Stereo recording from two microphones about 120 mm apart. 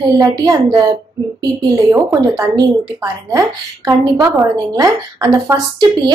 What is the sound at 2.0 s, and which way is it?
Speech, 35° right (ahead or behind).